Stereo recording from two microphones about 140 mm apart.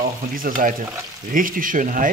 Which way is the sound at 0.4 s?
65° right (ahead or behind).